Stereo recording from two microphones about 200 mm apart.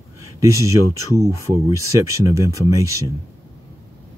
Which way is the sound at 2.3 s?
15° right (ahead or behind).